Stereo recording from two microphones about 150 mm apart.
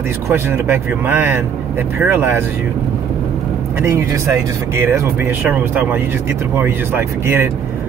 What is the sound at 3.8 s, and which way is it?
A man's voice, 20° right (ahead or behind).